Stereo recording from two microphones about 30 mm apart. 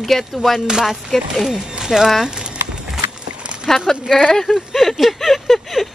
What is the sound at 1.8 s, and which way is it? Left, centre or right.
Speech, centre.